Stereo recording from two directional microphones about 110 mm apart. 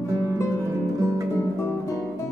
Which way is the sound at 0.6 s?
30° right (ahead or behind).